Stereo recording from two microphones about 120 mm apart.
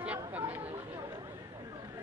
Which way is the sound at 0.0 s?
10° right (ahead or behind).